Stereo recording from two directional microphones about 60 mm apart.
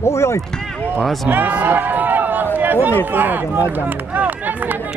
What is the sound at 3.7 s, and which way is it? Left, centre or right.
Run, right.